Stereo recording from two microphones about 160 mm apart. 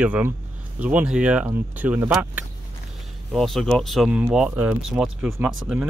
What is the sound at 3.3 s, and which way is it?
Speech, centre (ahead or behind).